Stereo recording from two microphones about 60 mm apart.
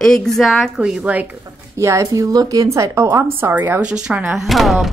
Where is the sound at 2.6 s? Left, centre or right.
Right.